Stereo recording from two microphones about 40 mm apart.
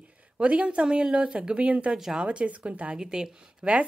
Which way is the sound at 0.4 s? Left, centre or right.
Right.